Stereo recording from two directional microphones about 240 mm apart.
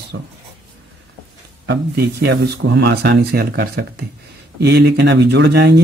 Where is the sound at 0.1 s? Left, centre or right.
Right.